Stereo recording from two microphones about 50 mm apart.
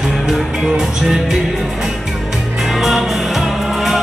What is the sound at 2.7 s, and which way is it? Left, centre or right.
Music, centre.